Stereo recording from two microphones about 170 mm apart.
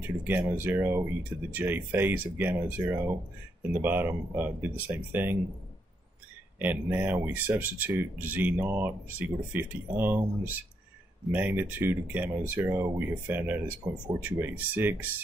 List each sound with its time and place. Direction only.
0.0 s speech: 10° right (ahead or behind)
6.6 s speech: 10° right (ahead or behind)